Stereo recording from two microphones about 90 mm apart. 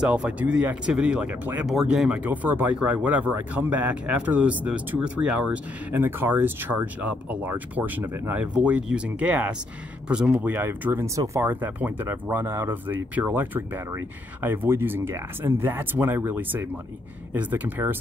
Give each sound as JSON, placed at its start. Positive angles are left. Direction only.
{"t": 0.0, "sound": "speech", "side_deg": -10}
{"t": 1.7, "sound": "speech", "side_deg": -5}